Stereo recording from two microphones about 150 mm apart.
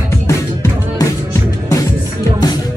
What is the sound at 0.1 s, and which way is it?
Music, 20° left (ahead or behind).